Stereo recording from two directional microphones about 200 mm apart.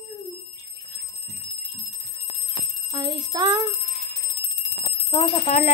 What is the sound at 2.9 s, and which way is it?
Speech, 20° right (ahead or behind).